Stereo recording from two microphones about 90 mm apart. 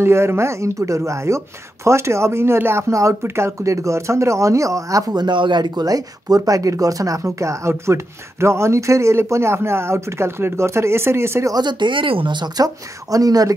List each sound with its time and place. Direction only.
0.0 s speech: 30° right (ahead or behind)
5.1 s speech: 60° right (ahead or behind); by 11.5 s 30° right (ahead or behind)
11.5 s speech: 60° right (ahead or behind); by 13.5 s 40° right (ahead or behind)